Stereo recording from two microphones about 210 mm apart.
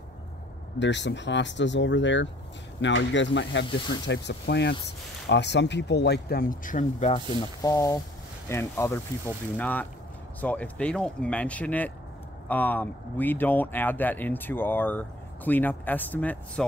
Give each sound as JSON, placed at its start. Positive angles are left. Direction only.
{"t": 0.7, "sound": "speech", "side_deg": 60}
{"t": 7.6, "sound": "speech", "side_deg": 15}